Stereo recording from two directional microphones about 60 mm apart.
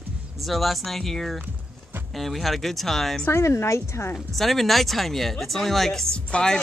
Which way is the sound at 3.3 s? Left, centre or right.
Left.